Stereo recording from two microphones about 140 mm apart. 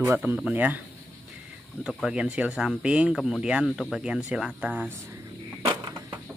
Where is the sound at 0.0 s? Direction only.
15° right (ahead or behind).